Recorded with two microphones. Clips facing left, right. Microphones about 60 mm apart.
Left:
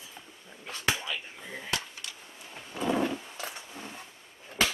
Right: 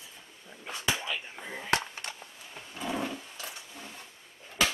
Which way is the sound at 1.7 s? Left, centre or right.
Right.